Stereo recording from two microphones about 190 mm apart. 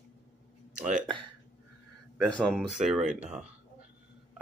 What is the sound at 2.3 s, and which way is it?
Speech, centre (ahead or behind).